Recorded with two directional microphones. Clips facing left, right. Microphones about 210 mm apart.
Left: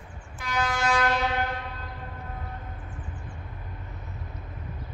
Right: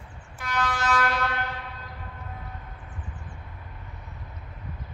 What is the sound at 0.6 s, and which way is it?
Vehicle, 20° left (ahead or behind).